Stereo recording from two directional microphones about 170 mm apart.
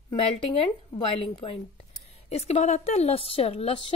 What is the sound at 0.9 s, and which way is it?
A woman's voice, 30° left (ahead or behind).